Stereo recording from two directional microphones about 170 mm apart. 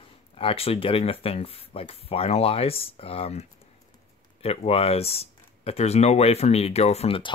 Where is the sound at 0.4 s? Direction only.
35° left (ahead or behind).